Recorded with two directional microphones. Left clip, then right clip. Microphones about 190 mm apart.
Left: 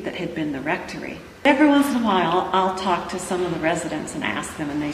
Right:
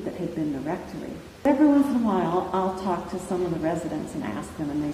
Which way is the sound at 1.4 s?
15° left (ahead or behind).